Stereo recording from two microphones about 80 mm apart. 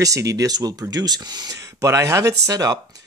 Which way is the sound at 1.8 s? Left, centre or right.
Right.